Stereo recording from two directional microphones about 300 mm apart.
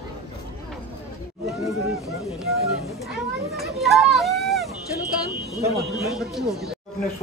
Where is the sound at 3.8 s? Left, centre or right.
Centre.